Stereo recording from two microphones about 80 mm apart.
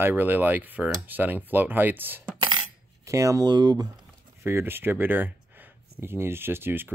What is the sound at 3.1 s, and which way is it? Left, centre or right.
Speech, right.